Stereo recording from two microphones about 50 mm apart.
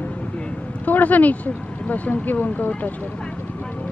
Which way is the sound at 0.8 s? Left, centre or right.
Left.